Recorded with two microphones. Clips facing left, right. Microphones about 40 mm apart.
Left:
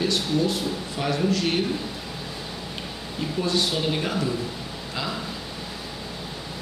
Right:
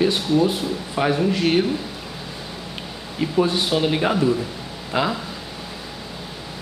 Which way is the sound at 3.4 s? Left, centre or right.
Centre.